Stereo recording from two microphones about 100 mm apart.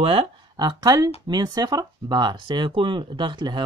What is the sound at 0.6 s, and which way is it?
Speech, 40° right (ahead or behind).